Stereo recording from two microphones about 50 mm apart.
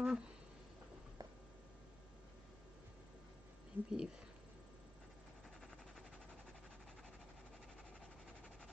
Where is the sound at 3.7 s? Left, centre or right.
Right.